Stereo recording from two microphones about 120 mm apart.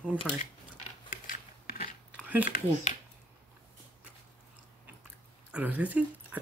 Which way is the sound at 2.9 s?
75° left (ahead or behind).